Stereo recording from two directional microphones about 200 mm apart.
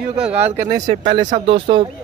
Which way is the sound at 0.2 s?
5° right (ahead or behind).